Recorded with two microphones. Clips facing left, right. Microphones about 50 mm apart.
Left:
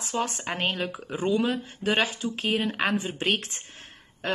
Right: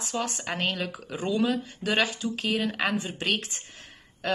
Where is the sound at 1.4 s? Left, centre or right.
Left.